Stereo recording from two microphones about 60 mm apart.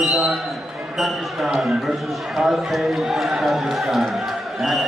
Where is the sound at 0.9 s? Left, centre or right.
Centre.